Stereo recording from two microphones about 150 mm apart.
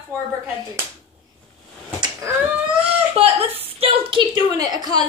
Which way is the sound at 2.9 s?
40° right (ahead or behind).